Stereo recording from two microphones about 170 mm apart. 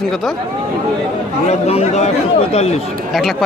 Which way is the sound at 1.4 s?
40° left (ahead or behind).